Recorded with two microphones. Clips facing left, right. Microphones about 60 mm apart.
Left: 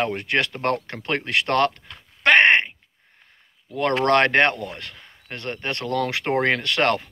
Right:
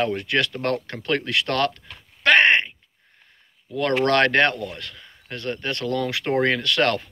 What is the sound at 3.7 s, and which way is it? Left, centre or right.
Speech, left.